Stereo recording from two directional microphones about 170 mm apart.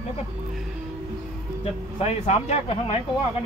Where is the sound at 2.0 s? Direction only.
40° left (ahead or behind).